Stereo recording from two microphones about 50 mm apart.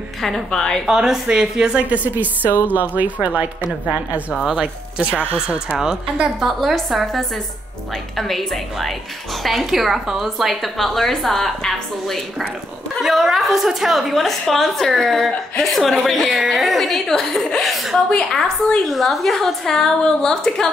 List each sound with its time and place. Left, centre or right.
0.5 s a woman's voice: centre
0.8 s a woman's voice: centre
1.8 s a woman's voice: right
4.5 s a woman's voice: centre
6.7 s a woman's voice: centre
18.1 s a woman's voice: centre
18.9 s a woman's voice: centre